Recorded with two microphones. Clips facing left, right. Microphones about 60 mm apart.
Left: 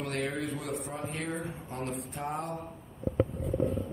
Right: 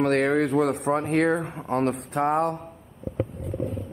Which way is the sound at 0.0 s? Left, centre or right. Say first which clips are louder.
Right 12 dB; right.